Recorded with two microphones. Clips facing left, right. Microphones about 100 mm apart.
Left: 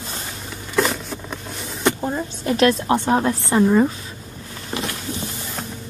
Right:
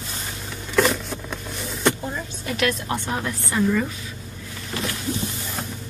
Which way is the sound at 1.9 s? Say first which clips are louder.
Left 6 dB; 35° left (ahead or behind).